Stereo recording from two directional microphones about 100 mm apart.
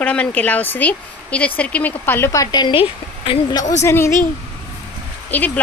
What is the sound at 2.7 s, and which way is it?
Speech, 70° left (ahead or behind).